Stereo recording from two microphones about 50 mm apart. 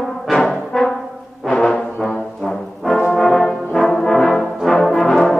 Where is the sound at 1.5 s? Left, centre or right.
Centre.